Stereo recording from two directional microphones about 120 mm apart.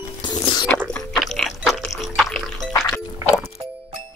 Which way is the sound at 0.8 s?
5° left (ahead or behind).